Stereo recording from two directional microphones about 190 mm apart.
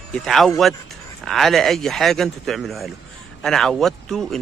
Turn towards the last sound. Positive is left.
turn(degrees=0)  # may be behind; listen again after turning